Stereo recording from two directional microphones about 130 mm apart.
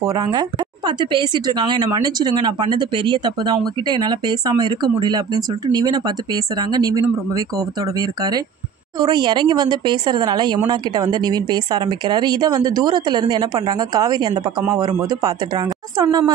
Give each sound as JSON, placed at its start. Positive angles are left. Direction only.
{"t": 0.0, "sound": "a woman's voice", "side_deg": -30}